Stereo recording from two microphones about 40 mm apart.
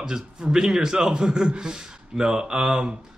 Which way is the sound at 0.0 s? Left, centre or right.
Centre.